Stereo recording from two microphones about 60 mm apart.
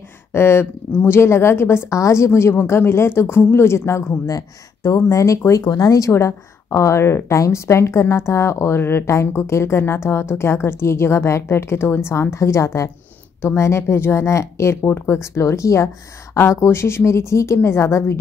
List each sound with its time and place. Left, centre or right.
0.3 s speech: left
1.9 s a woman's voice: left
4.3 s speech: left
5.0 s a woman's voice: left
5.5 s speech: left